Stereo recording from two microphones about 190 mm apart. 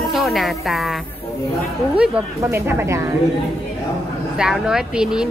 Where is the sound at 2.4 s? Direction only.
15° right (ahead or behind).